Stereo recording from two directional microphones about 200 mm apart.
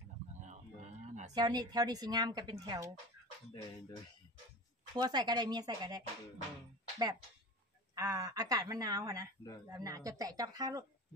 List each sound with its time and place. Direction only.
0.5 s a sound: 35° right (ahead or behind)
1.3 s a woman's voice: 20° right (ahead or behind)
4.9 s a woman's voice: 20° right (ahead or behind)
7.9 s a woman's voice: 15° right (ahead or behind)